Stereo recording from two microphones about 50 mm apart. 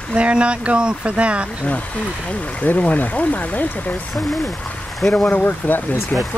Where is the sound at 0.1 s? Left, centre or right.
Right.